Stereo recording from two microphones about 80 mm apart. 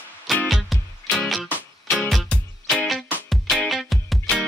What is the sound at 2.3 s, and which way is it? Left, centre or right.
Music, centre.